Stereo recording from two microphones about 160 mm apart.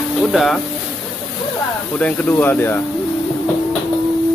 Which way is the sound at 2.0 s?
10° left (ahead or behind).